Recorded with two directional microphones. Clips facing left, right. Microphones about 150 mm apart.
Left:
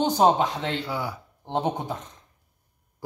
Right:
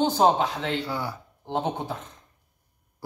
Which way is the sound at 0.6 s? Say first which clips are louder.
Right 1 dB; 10° right (ahead or behind).